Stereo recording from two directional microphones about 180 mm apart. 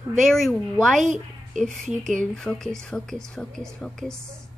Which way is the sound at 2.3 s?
5° left (ahead or behind).